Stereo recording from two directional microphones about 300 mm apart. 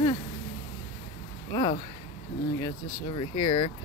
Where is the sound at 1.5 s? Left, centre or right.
Centre.